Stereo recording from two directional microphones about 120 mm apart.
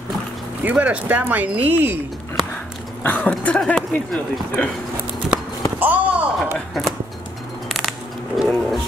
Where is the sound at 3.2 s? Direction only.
5° left (ahead or behind).